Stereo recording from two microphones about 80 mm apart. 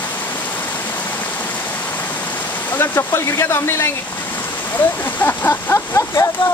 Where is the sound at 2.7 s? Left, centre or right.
Left.